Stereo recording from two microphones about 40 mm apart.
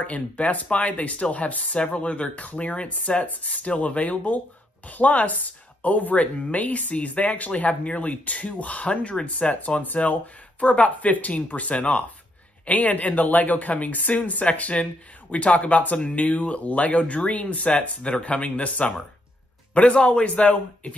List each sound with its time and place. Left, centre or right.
0.0 s a man's voice: left